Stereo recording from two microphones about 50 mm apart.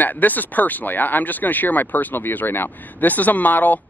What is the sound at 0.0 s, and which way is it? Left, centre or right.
Speech, left.